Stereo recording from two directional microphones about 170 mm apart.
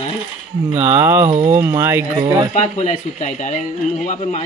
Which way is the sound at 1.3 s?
40° right (ahead or behind).